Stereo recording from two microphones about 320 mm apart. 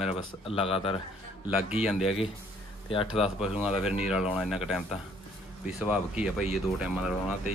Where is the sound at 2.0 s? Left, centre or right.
Centre.